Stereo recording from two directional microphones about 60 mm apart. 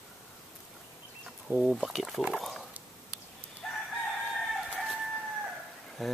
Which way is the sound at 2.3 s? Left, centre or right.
Centre.